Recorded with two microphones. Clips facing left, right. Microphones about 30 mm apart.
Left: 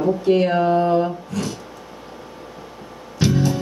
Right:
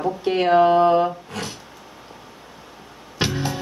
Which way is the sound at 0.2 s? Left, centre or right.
Right.